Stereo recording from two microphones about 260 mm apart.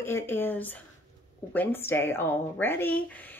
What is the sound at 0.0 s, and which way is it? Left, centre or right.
Speech, centre.